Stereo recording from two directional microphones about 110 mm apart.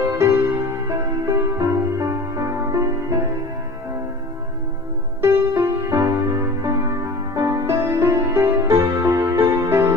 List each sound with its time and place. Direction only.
0.2 s music: 20° right (ahead or behind)
5.2 s music: 25° right (ahead or behind)